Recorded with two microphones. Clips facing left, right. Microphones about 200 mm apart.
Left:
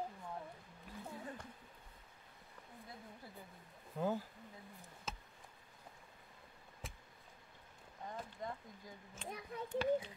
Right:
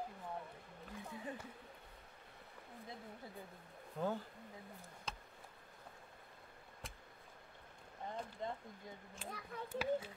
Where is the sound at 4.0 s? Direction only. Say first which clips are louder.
Left 2 dB; 5° left (ahead or behind).